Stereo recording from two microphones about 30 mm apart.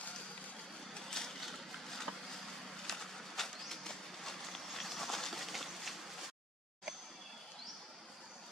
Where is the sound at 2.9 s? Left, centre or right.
Centre.